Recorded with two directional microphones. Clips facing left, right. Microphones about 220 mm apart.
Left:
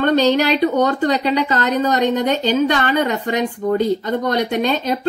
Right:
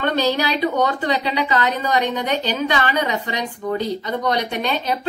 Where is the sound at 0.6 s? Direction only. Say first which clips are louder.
Left 4 dB; 45° left (ahead or behind).